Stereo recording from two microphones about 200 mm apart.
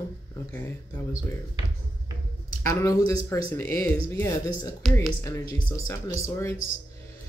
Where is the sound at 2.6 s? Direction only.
15° left (ahead or behind).